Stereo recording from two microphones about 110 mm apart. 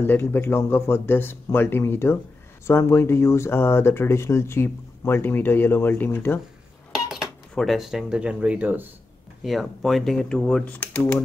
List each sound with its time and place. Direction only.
0.0 s speech: 20° left (ahead or behind)
7.1 s speech: centre (ahead or behind)
9.4 s speech: centre (ahead or behind); by 11.1 s 15° left (ahead or behind)